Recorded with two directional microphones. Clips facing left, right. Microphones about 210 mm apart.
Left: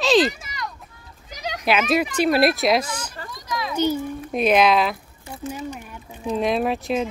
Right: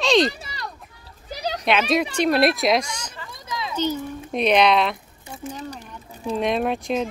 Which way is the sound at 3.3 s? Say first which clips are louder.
Left 3 dB; 25° right (ahead or behind).